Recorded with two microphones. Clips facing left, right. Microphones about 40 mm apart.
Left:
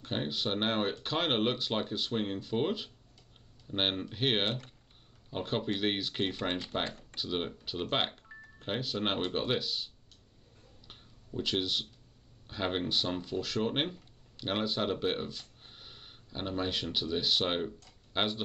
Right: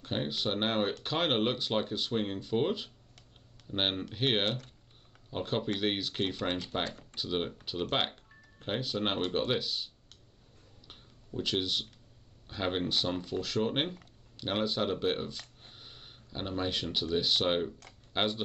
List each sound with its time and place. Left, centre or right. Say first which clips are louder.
0.0 s speech: right 1 dB; centre
8.5 s speech: right 1 dB; centre
10.9 s a sound: even; centre
12.4 s speech: right 1 dB; centre